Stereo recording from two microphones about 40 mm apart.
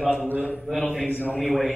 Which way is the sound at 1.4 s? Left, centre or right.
Centre.